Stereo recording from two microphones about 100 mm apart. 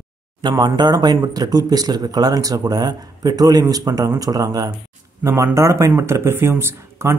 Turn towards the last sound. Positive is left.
turn(degrees=-25)  # may be behind; listen again after turning